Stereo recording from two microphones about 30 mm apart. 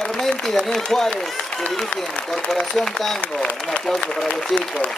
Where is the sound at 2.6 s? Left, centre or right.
Centre.